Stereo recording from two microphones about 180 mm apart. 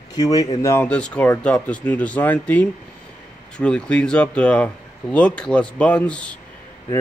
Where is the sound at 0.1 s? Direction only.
20° left (ahead or behind).